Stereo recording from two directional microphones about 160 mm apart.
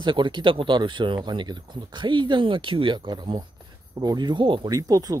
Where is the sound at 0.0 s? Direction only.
30° right (ahead or behind).